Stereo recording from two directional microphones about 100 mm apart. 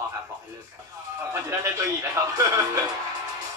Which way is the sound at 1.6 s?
30° right (ahead or behind).